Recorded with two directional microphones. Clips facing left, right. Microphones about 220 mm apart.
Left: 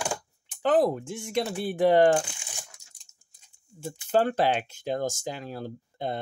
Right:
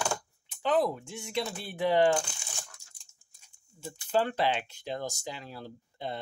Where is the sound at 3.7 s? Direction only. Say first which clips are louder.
Left 4 dB; 45° left (ahead or behind).